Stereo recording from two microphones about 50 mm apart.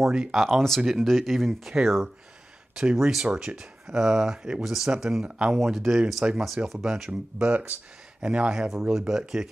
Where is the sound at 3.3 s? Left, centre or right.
Centre.